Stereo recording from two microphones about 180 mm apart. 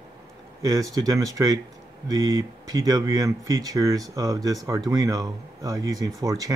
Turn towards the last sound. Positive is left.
turn(degrees=-20)  # may be behind; listen again after turning